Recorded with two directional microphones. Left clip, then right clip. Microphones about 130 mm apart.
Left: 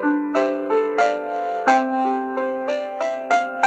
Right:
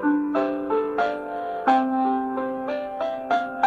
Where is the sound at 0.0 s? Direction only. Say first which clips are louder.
Left 3 dB; 30° left (ahead or behind).